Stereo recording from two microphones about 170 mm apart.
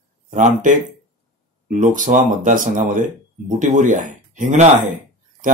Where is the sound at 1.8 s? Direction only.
50° right (ahead or behind).